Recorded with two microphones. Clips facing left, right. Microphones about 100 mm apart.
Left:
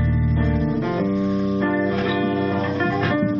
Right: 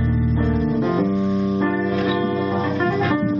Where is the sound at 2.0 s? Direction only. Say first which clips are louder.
Even; 25° right (ahead or behind).